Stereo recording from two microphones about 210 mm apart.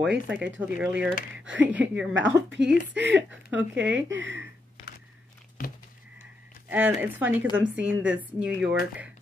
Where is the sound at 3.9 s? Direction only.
60° right (ahead or behind).